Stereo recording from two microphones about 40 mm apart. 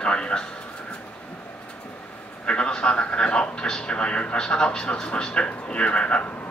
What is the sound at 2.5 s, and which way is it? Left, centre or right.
Speech, left.